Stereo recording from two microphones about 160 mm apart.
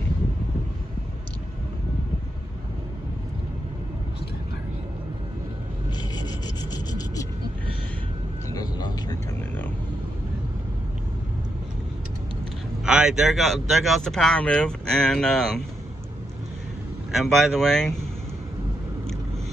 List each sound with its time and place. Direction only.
6.1 s rub: 25° left (ahead or behind)
8.5 s a sound: 25° left (ahead or behind)
12.8 s speech: 5° right (ahead or behind)
17.1 s speech: centre (ahead or behind)